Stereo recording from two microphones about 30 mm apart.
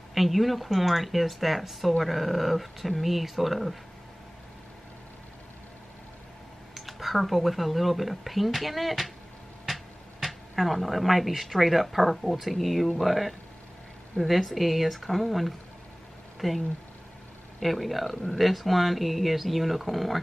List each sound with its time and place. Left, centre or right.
0.1 s speech: centre
6.7 s speech: centre
10.2 s speech: centre
18.1 s speech: left
18.4 s speech: centre